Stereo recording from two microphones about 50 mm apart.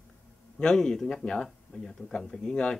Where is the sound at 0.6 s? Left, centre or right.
Centre.